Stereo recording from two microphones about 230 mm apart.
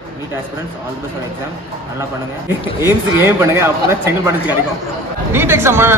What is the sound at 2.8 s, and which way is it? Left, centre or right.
Speech, centre.